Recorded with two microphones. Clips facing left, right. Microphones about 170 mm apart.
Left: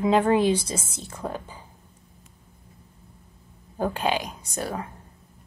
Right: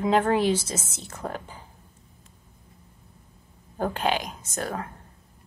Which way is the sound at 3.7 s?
15° left (ahead or behind).